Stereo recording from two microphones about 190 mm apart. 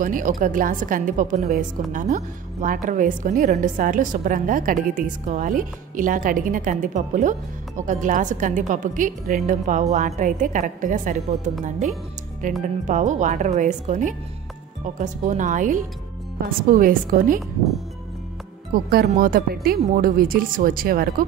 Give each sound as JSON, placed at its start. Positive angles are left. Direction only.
{"t": 0.0, "sound": "a woman's voice", "side_deg": -45}
{"t": 12.6, "sound": "a woman's voice", "side_deg": -40}
{"t": 18.7, "sound": "a woman's voice", "side_deg": -50}